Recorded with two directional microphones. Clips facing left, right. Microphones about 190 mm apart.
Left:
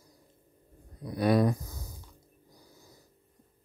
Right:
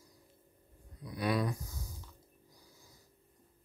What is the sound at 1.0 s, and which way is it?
Speech, 45° left (ahead or behind).